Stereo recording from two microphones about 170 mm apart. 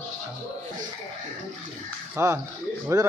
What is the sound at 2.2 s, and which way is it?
Speech, 15° right (ahead or behind).